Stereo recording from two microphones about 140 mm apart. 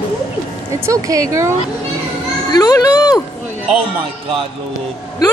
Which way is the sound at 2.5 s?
25° left (ahead or behind).